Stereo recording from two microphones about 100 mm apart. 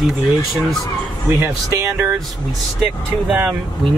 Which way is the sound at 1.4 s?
30° right (ahead or behind).